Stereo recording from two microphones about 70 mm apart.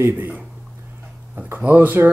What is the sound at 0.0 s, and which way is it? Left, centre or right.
Speech, right.